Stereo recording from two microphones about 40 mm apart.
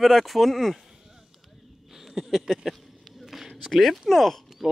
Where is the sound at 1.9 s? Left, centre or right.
Centre.